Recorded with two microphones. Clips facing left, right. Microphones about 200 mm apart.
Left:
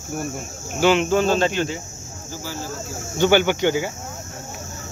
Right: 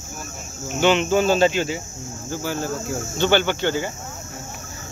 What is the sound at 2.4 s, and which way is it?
Speech, 60° right (ahead or behind).